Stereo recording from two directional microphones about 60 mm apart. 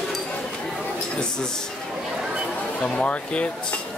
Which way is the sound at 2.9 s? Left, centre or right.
Centre.